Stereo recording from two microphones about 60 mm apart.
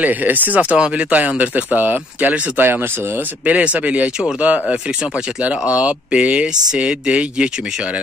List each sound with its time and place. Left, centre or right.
0.0 s speech: right
3.4 s speech: right
5.8 s speech: centre